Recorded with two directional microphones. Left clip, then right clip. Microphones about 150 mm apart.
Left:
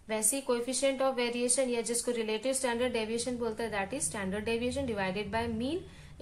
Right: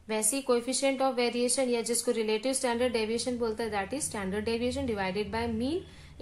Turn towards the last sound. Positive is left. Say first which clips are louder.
# right 1 dB
turn(degrees=-35)  # may be behind; listen again after turning